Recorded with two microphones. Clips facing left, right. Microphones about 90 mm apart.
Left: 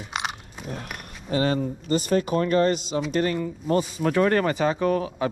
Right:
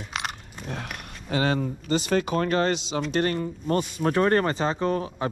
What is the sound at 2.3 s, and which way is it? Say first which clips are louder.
Speech: left 2 dB; 45° right (ahead or behind).